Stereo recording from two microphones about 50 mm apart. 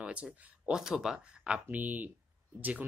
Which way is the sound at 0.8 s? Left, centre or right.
Centre.